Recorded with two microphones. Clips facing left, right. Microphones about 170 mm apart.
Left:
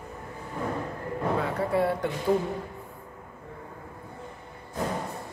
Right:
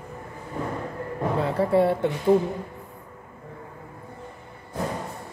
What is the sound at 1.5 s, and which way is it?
Speech, 25° right (ahead or behind).